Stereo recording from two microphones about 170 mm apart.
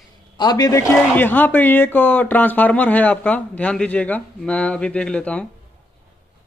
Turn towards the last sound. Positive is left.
turn(degrees=5)  # may be behind; listen again after turning